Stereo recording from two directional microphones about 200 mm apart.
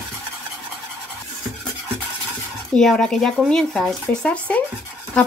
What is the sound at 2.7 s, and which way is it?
Speech, centre (ahead or behind).